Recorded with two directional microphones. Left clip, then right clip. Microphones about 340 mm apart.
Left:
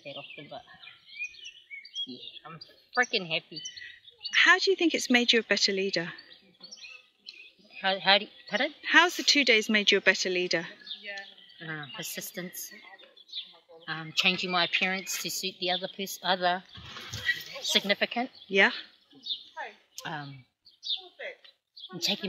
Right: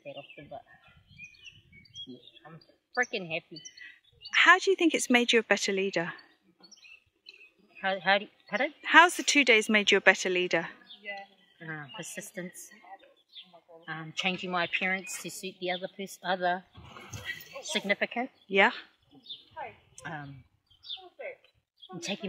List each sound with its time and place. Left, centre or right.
0.0 s a woman's voice: centre
2.3 s a woman's voice: centre
7.7 s a woman's voice: centre
10.9 s a sound: right
11.5 s a woman's voice: centre
13.3 s bird: right
13.8 s a woman's voice: centre
16.7 s a sound: right
17.7 s speech: centre
20.0 s speech: centre
20.9 s bird: right
22.1 s speech: centre